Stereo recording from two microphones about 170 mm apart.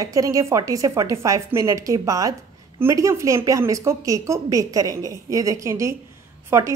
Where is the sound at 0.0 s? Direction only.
20° right (ahead or behind).